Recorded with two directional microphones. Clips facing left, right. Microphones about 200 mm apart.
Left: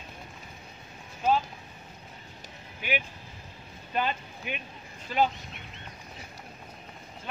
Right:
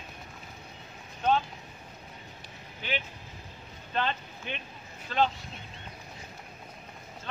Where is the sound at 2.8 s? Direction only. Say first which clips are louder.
Left 3 dB; 10° left (ahead or behind).